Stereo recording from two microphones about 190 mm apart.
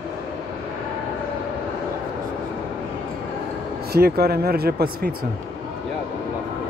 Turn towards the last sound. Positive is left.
turn(degrees=-55)  # may be behind; listen again after turning